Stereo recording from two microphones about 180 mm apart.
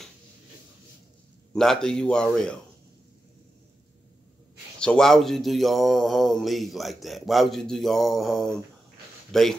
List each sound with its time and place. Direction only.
1.5 s speech: 5° left (ahead or behind)
4.7 s speech: 5° left (ahead or behind)